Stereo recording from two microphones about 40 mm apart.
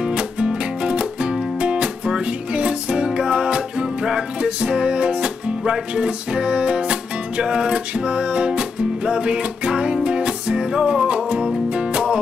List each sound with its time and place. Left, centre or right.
0.0 s music: right